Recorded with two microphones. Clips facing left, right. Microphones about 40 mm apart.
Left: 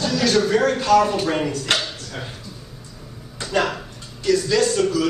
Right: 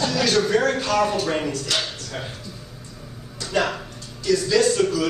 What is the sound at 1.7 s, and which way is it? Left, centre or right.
Speech, left.